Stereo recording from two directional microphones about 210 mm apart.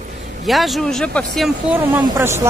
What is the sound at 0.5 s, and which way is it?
Speech, centre (ahead or behind).